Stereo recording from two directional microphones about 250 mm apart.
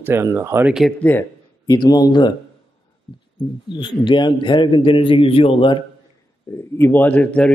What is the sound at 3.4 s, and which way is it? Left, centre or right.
A man's voice, centre.